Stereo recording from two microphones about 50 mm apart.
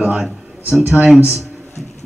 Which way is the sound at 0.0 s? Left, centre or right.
Centre.